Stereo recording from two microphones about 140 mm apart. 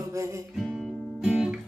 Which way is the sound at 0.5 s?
Centre (ahead or behind).